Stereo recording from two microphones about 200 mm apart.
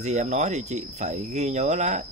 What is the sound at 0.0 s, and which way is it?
Speech, 35° right (ahead or behind).